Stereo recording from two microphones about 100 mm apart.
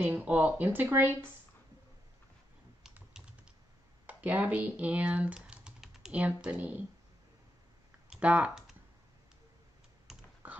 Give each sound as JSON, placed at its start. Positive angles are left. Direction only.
{"t": 0.0, "sound": "speech", "side_deg": -15}
{"t": 4.0, "sound": "speech", "side_deg": -15}
{"t": 8.1, "sound": "speech", "side_deg": -10}
{"t": 10.4, "sound": "dog", "side_deg": -15}